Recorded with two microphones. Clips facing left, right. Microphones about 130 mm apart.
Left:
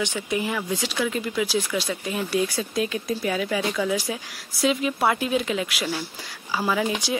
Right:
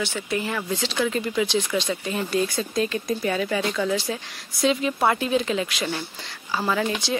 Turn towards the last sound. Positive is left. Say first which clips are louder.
# even
turn(degrees=10)  # may be behind; listen again after turning